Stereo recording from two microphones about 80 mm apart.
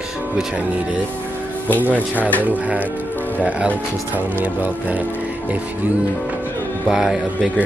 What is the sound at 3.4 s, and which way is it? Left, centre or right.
Music, centre.